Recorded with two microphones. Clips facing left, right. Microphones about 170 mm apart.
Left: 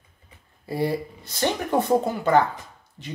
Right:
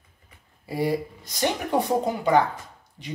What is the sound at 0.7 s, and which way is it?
Speech, 10° right (ahead or behind).